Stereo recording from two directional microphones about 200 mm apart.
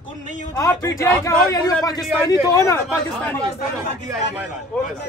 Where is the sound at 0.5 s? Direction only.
15° left (ahead or behind).